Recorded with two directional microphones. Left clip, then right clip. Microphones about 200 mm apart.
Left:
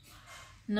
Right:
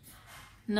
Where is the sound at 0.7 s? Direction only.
45° right (ahead or behind).